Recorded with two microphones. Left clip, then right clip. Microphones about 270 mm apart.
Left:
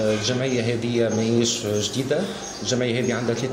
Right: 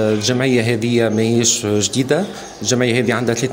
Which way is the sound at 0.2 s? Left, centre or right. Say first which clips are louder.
Right 7 dB; right.